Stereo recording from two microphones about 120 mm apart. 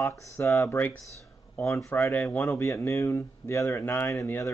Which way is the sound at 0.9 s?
25° right (ahead or behind).